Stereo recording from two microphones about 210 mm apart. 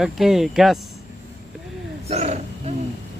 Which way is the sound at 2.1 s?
30° right (ahead or behind).